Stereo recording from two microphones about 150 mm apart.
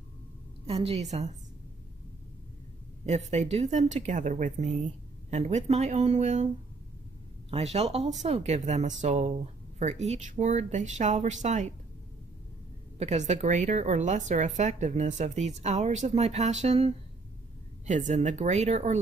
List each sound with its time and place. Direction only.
0.7 s speech: 40° right (ahead or behind)
3.1 s speech: 50° right (ahead or behind)
7.5 s speech: 45° right (ahead or behind)
13.0 s speech: 50° right (ahead or behind)